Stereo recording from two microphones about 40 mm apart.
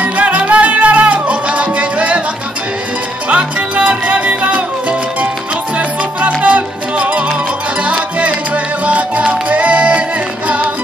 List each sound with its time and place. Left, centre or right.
0.0 s music: right
3.3 s music: right